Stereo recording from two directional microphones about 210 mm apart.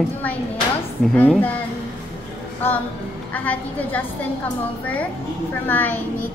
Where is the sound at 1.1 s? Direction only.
10° left (ahead or behind).